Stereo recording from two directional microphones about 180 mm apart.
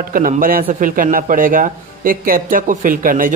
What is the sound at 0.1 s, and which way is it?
Speech, 50° right (ahead or behind).